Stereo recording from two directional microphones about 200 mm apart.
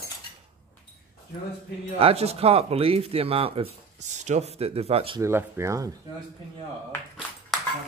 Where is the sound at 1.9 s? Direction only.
30° right (ahead or behind).